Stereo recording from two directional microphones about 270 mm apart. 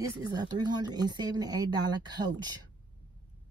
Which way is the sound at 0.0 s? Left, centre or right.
Centre.